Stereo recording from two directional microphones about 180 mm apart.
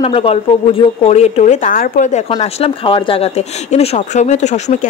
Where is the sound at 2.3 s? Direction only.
30° left (ahead or behind).